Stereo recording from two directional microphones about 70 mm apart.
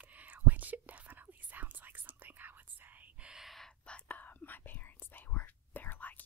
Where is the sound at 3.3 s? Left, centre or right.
Centre.